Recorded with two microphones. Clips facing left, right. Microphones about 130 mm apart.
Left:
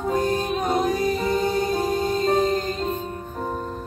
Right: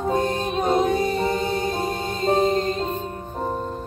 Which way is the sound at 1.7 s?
Centre (ahead or behind).